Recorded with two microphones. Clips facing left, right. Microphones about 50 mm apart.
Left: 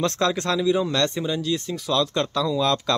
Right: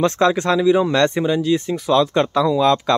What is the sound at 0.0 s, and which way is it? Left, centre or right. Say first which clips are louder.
Speech: right 6 dB; right.